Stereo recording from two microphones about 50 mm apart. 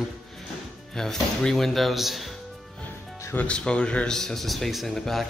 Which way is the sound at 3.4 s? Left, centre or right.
Centre.